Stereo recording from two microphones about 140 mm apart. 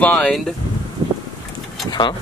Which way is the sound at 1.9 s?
30° left (ahead or behind).